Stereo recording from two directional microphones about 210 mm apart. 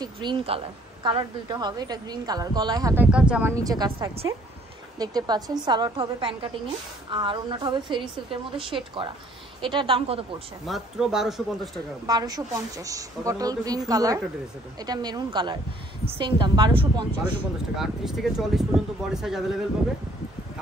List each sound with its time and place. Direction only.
0.0 s a woman's voice: 20° right (ahead or behind)
10.7 s speech: centre (ahead or behind)
12.1 s a woman's voice: 20° right (ahead or behind)
17.7 s speech: centre (ahead or behind)